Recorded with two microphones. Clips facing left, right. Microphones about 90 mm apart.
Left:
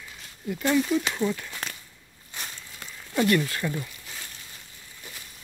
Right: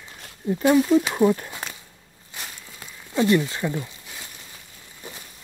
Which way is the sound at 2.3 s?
5° right (ahead or behind).